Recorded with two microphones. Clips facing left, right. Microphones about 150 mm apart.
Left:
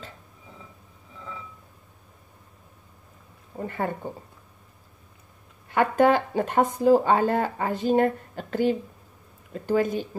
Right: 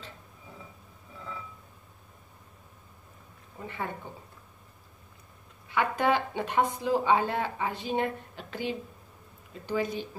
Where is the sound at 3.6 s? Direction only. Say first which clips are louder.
Left 7 dB; 45° left (ahead or behind).